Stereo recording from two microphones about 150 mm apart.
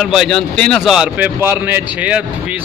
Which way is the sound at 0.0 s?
Centre (ahead or behind).